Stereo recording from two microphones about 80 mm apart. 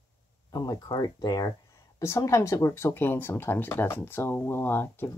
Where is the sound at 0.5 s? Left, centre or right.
Left.